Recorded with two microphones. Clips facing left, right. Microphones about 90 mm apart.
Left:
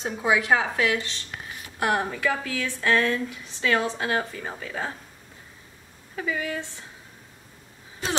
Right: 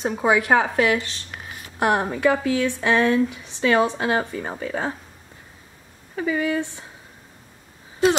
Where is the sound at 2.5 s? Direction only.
20° right (ahead or behind).